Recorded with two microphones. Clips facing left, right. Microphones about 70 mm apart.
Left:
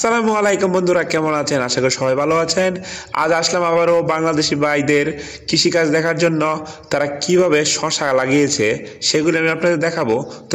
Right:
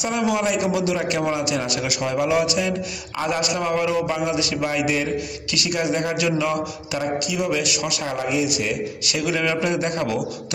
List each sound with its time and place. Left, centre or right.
0.0 s a man's voice: left